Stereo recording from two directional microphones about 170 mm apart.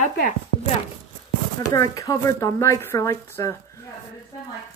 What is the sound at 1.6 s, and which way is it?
Speech, 20° left (ahead or behind).